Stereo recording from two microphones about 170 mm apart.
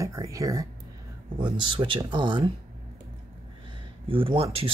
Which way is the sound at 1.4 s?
30° right (ahead or behind).